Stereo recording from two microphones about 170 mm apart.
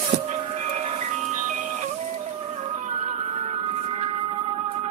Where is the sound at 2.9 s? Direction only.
40° right (ahead or behind).